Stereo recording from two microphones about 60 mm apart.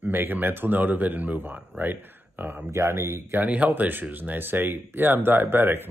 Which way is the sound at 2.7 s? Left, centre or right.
Right.